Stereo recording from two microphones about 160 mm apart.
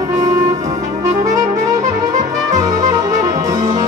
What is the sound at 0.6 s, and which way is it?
Music, 45° right (ahead or behind).